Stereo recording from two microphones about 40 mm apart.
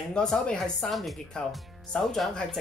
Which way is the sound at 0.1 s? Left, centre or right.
Left.